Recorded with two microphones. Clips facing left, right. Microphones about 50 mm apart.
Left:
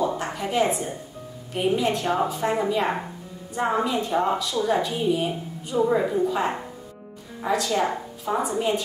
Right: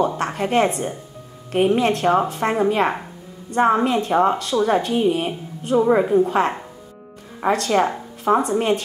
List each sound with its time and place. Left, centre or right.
0.0 s a woman's voice: right
8.3 s speech: right